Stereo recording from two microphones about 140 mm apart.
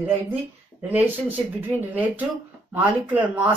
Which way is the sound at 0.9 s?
10° right (ahead or behind).